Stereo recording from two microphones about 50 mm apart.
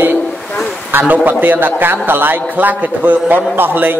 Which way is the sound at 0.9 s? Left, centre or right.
Right.